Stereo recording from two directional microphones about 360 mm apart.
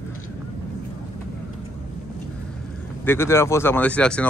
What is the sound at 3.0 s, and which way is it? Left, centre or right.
Speech, centre.